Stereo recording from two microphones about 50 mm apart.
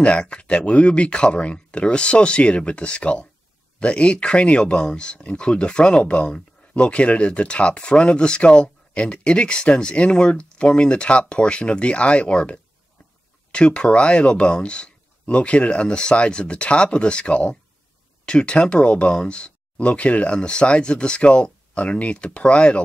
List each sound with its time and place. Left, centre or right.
0.0 s speech: left